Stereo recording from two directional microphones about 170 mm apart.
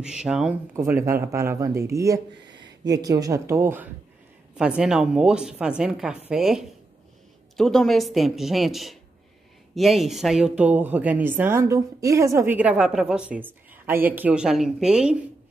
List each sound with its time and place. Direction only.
0.0 s a woman's voice: 5° right (ahead or behind)